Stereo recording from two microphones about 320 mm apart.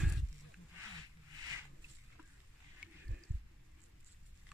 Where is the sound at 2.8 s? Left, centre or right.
Centre.